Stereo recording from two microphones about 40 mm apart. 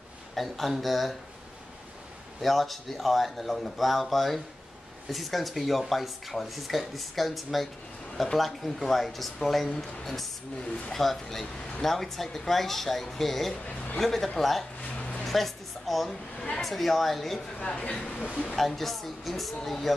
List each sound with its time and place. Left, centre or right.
0.4 s speech: centre
2.4 s speech: centre
15.0 s a sound: left
15.2 s music: centre
16.3 s speech: centre
16.6 s speech: centre
17.6 s speech: left
18.3 s speech: left
18.6 s speech: centre